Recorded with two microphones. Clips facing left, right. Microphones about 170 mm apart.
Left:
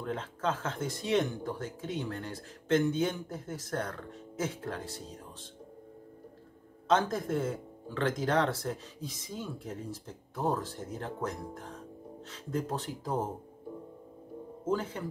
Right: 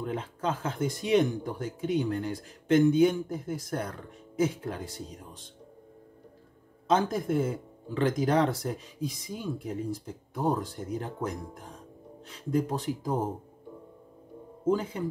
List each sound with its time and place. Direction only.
0.0 s speech: 10° right (ahead or behind)
6.9 s speech: 10° right (ahead or behind)
14.6 s speech: 10° right (ahead or behind)